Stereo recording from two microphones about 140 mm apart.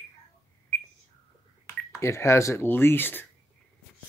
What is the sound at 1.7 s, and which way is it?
Speech, 20° left (ahead or behind).